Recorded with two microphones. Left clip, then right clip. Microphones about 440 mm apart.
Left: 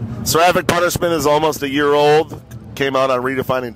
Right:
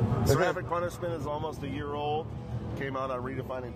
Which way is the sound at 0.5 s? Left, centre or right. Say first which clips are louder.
Left 16 dB; left.